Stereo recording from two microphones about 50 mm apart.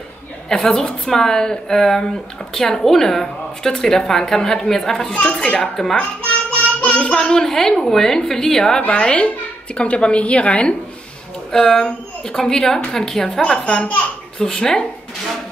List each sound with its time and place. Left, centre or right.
0.7 s a woman's voice: centre
5.1 s a woman's voice: left
6.5 s child singing: left
7.0 s a woman's voice: centre
8.8 s a woman's voice: left